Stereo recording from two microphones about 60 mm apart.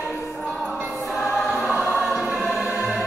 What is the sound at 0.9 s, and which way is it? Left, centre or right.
Choir, centre.